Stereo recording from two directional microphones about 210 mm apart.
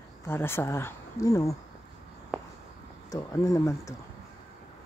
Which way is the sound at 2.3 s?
Centre (ahead or behind).